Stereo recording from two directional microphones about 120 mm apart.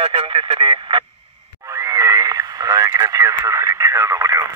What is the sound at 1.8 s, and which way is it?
Radio, 25° right (ahead or behind).